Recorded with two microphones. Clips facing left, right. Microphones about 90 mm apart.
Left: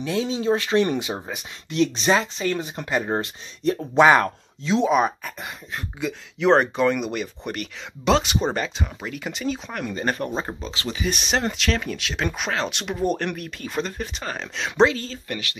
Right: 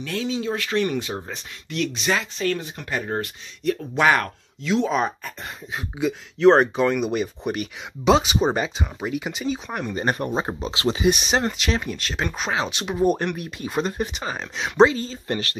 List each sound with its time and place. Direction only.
0.0 s speech: 20° left (ahead or behind)
0.3 s speech: 30° left (ahead or behind); by 1.4 s 10° left (ahead or behind)
1.7 s speech: 25° left (ahead or behind)
4.8 s speech: 10° left (ahead or behind)
5.8 s speech: 5° right (ahead or behind); by 11.1 s 25° right (ahead or behind)
11.1 s speech: 5° right (ahead or behind)
15.2 s speech: 35° right (ahead or behind)